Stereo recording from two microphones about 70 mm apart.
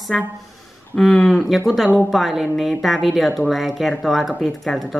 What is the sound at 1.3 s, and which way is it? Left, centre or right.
Speech, centre.